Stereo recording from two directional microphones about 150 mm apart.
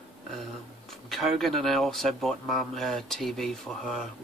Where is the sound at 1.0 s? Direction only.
Centre (ahead or behind).